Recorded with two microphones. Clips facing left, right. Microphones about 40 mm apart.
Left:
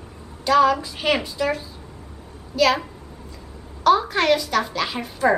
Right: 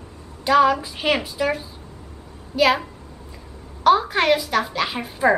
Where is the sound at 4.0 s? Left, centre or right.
Centre.